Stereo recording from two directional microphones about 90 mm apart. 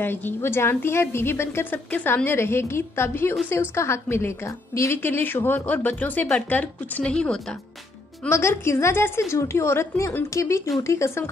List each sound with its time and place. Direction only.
0.0 s a woman's voice: 25° left (ahead or behind)
8.3 s a woman's voice: 30° left (ahead or behind)